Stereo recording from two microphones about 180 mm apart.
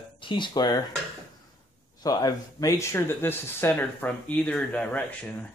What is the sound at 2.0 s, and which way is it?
Speech, 20° left (ahead or behind).